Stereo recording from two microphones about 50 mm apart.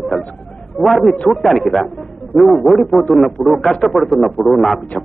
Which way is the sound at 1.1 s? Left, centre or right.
Centre.